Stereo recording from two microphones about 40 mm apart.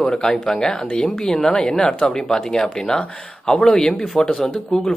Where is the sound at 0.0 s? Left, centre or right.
Centre.